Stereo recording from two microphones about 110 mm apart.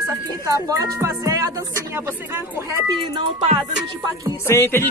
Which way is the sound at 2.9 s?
45° right (ahead or behind).